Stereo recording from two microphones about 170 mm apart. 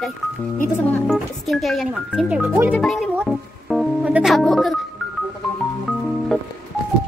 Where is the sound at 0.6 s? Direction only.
10° left (ahead or behind); by 2.7 s 15° right (ahead or behind).